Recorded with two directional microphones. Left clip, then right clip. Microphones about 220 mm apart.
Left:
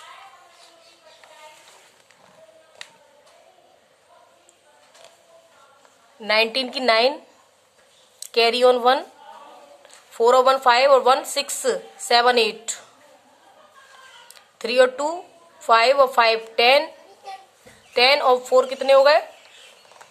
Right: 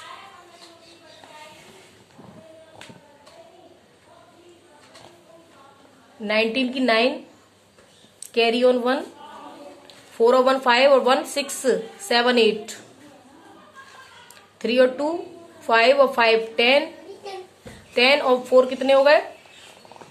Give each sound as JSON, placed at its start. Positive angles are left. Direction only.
{"t": 6.2, "sound": "a woman's voice", "side_deg": 35}
{"t": 8.2, "sound": "speech", "side_deg": 35}
{"t": 10.1, "sound": "a woman's voice", "side_deg": 35}
{"t": 14.6, "sound": "a woman's voice", "side_deg": 35}
{"t": 17.9, "sound": "a woman's voice", "side_deg": 30}